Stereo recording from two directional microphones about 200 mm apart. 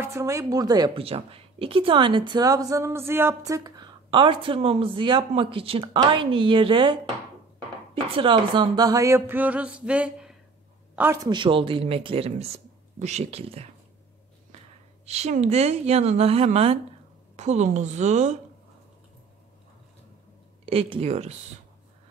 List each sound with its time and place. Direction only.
0.0 s a woman's voice: 15° right (ahead or behind); by 13.7 s 30° right (ahead or behind)
15.0 s speech: 35° right (ahead or behind)
20.6 s speech: 30° right (ahead or behind)